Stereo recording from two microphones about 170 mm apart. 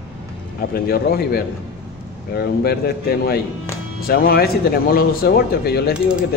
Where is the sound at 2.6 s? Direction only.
65° left (ahead or behind).